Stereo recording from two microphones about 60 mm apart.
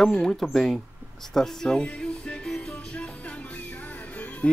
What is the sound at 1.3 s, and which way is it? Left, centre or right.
Music, centre.